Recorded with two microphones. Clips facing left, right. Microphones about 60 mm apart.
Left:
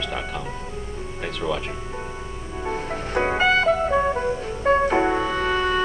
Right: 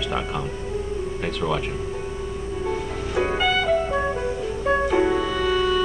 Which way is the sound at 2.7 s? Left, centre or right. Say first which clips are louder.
Left 3 dB; left.